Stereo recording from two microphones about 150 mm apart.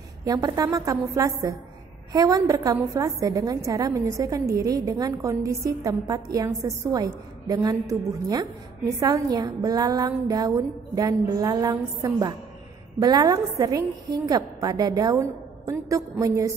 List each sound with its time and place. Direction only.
0.2 s a woman's voice: 25° right (ahead or behind)